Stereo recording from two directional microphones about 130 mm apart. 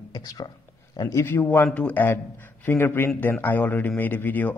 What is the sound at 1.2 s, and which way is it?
A man's voice, 15° left (ahead or behind).